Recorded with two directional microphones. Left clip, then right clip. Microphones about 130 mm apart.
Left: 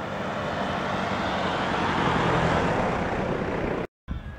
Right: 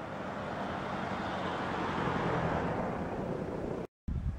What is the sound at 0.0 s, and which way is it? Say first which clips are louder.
Vehicle: left 9 dB; 25° left (ahead or behind).